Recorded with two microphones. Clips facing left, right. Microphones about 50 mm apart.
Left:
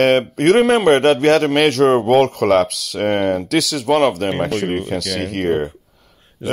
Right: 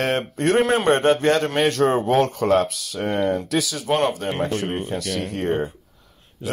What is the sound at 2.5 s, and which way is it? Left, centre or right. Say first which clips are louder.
Speech: left 4 dB; left.